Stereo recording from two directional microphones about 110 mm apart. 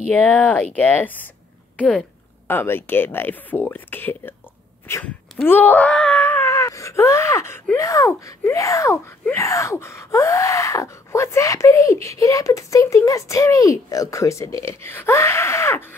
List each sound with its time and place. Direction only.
0.1 s speech: 15° left (ahead or behind)
2.4 s gasp: 20° left (ahead or behind)
4.8 s speech: 25° left (ahead or behind)
5.4 s gasp: 15° left (ahead or behind)